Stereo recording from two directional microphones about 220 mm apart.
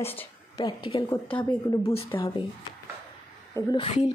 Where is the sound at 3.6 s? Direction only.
20° left (ahead or behind).